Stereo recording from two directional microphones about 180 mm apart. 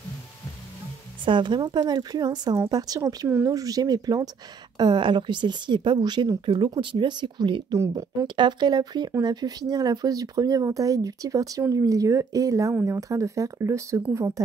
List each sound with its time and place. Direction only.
1.2 s speech: 25° right (ahead or behind)